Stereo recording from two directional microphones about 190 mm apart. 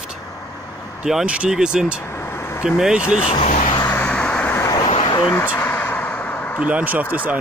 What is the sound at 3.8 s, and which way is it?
Vehicle, 10° left (ahead or behind).